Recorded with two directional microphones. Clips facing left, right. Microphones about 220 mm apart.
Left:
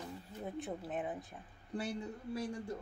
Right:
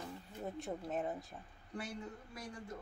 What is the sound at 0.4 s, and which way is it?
Speech, centre (ahead or behind).